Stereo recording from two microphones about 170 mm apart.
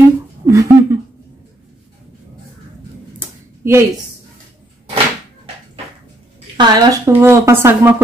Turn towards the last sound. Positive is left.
turn(degrees=-10)  # may be behind; listen again after turning